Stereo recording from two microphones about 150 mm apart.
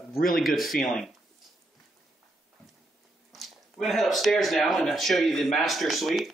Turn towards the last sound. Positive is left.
turn(degrees=0)  # may be behind; listen again after turning